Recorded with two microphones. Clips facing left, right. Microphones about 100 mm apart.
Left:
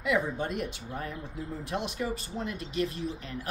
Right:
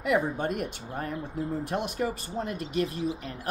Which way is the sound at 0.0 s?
45° right (ahead or behind).